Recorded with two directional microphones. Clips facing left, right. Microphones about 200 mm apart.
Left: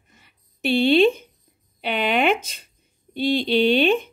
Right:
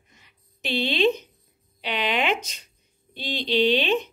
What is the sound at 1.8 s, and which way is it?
Speech, 50° left (ahead or behind).